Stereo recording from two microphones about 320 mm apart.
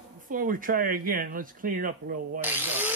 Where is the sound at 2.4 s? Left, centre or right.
Centre.